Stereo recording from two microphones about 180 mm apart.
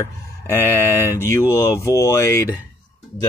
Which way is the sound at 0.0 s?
15° left (ahead or behind).